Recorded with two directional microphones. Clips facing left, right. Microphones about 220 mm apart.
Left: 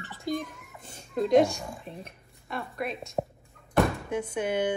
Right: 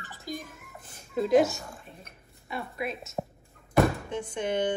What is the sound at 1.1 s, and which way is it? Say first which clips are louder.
Speech: left 1 dB; 5° right (ahead or behind).